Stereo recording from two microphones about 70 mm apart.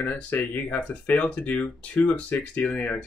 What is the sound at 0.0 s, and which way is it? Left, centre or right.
Speech, centre.